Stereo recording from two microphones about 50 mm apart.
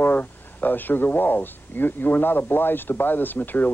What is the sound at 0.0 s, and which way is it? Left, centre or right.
Speech, left.